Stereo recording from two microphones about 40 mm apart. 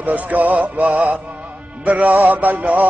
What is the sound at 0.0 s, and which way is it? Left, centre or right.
Music, right.